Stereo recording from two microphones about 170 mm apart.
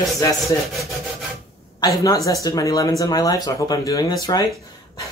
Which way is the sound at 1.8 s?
20° left (ahead or behind).